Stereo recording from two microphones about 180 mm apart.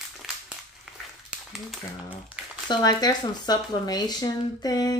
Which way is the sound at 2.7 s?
20° left (ahead or behind).